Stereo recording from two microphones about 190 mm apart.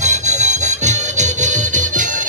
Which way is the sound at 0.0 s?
35° right (ahead or behind).